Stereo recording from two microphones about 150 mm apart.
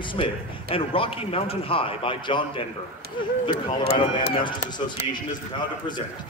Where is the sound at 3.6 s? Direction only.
35° left (ahead or behind).